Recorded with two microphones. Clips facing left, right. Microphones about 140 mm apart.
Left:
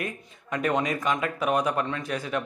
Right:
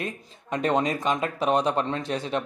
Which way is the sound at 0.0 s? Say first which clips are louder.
Right 1 dB; 25° right (ahead or behind).